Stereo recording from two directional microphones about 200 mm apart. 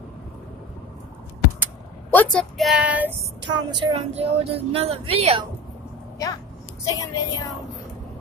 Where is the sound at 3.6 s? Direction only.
25° right (ahead or behind).